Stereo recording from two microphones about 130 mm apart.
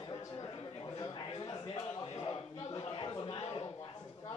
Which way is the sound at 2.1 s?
40° left (ahead or behind).